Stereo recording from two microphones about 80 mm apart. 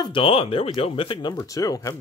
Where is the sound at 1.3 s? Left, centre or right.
Left.